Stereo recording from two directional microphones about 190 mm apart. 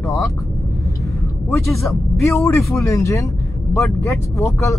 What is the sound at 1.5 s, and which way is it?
Speech, 15° left (ahead or behind).